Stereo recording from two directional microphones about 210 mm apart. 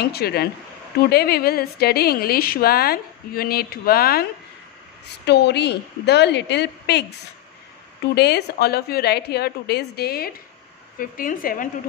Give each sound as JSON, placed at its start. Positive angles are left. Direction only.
{"t": 0.0, "sound": "a woman's voice", "side_deg": 50}
{"t": 8.1, "sound": "a woman's voice", "side_deg": 50}